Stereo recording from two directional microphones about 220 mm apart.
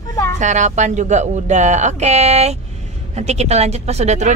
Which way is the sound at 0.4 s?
35° right (ahead or behind).